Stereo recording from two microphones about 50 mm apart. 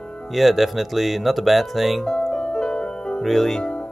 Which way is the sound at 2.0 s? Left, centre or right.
Centre.